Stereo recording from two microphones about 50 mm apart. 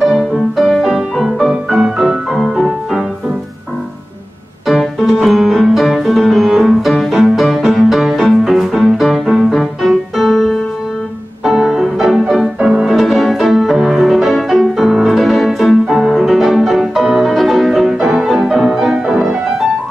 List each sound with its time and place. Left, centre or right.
0.0 s music: centre
5.2 s piano: centre
8.2 s music: centre
11.4 s music: centre
12.5 s music: centre
12.8 s music: centre
15.9 s music: centre